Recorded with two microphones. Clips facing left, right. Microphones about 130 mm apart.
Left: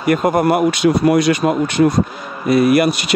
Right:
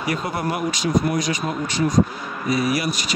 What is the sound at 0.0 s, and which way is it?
Speech, 55° left (ahead or behind).